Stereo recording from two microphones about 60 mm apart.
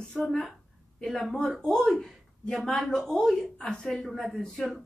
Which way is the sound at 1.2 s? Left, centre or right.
Centre.